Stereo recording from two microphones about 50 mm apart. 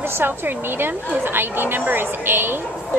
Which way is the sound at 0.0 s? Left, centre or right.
Right.